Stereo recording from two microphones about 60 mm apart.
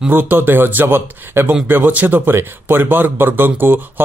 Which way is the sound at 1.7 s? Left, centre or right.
Right.